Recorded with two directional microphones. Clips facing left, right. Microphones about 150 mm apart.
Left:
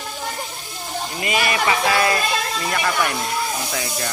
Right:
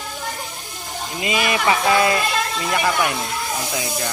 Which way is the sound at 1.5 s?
20° right (ahead or behind).